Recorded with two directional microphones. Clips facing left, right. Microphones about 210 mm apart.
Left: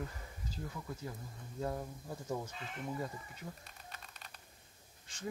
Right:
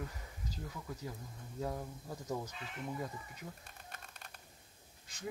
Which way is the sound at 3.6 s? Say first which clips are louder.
Even; 50° right (ahead or behind).